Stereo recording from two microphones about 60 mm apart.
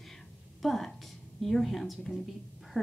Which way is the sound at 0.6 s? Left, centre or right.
Centre.